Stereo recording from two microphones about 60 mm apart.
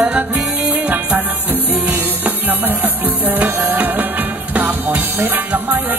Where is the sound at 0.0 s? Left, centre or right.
Right.